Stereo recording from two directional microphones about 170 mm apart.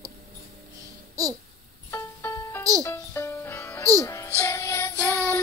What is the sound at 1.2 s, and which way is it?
Babbling, 20° right (ahead or behind).